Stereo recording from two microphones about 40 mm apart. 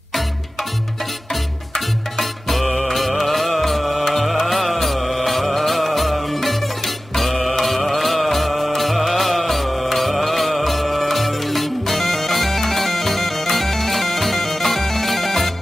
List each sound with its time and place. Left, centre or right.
2.1 s music: centre